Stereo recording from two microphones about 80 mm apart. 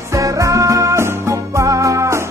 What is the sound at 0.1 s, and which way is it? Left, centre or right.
Music, right.